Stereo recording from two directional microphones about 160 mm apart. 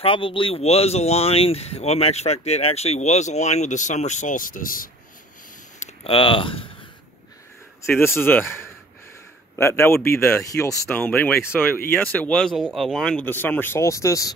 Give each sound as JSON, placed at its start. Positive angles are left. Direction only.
{"t": 0.0, "sound": "speech", "side_deg": 35}
{"t": 6.0, "sound": "speech", "side_deg": 35}
{"t": 7.9, "sound": "speech", "side_deg": 15}